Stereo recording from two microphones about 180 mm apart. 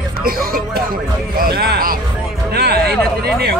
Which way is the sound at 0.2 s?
55° right (ahead or behind).